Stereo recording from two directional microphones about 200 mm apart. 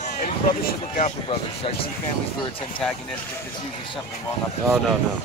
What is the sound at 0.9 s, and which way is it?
Speech, 35° left (ahead or behind).